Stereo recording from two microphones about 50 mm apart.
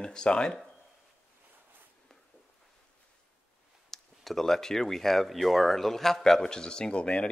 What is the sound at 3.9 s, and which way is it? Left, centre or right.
Speech, centre.